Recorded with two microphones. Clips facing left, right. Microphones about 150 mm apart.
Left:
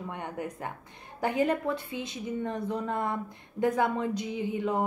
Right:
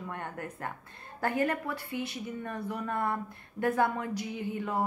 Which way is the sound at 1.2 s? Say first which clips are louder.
Left 3 dB; 20° left (ahead or behind).